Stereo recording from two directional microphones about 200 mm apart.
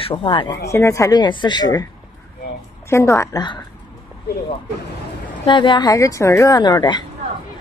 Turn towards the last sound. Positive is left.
turn(degrees=20)  # may be behind; listen again after turning